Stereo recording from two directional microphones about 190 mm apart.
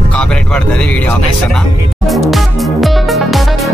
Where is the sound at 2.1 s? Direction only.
Centre (ahead or behind).